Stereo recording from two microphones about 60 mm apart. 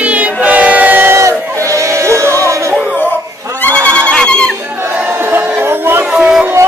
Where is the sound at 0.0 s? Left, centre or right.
Right.